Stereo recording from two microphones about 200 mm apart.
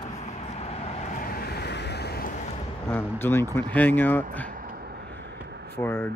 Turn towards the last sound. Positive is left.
turn(degrees=10)  # may be behind; listen again after turning